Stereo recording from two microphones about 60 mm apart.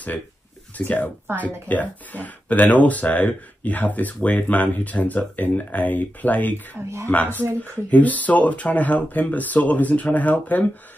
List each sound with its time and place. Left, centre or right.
0.7 s speech: left